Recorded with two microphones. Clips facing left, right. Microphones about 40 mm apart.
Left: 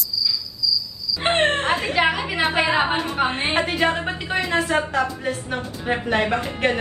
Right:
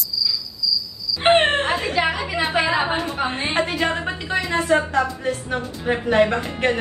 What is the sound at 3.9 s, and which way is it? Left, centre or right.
Speech, centre.